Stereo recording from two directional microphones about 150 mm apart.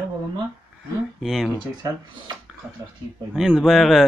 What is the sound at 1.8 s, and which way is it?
Speech, 25° right (ahead or behind).